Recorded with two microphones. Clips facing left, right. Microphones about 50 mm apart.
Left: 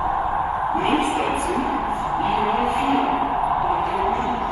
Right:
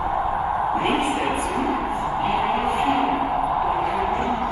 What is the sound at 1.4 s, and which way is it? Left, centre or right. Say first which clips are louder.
Music: left 1 dB; centre.